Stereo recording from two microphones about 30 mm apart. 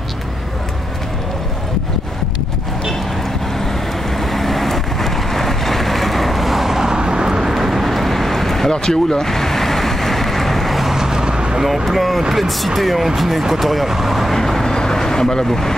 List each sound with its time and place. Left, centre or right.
4.2 s vehicle: centre
6.8 s vehicle: right
7.5 s vehicle: centre
8.6 s vehicle: centre
10.9 s vehicle: centre
11.6 s speech: centre
14.3 s vehicle: centre
14.7 s vehicle: left